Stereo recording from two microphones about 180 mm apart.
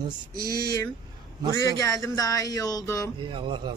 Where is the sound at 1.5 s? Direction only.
20° left (ahead or behind).